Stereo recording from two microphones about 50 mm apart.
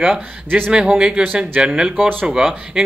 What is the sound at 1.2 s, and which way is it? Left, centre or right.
Speech, right.